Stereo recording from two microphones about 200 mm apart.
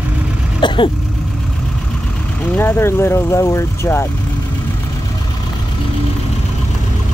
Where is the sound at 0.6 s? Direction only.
20° left (ahead or behind).